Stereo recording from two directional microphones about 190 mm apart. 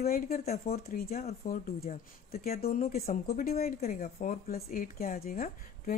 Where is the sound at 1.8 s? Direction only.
35° left (ahead or behind).